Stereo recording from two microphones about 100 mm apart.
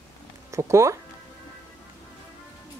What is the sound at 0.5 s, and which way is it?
Speech, 30° right (ahead or behind).